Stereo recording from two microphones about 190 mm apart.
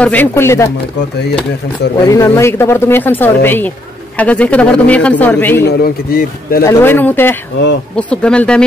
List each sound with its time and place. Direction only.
0.0 s speech: 10° left (ahead or behind)
2.0 s speech: 15° left (ahead or behind)
5.7 s speech: 50° left (ahead or behind)
6.6 s speech: 15° left (ahead or behind)